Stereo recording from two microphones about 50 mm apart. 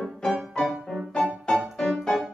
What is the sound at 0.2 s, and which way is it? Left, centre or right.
Music, centre.